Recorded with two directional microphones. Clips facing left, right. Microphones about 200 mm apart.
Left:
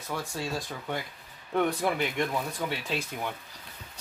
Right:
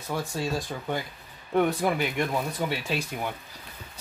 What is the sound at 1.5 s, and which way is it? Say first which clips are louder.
Speech: right 3 dB; 5° right (ahead or behind).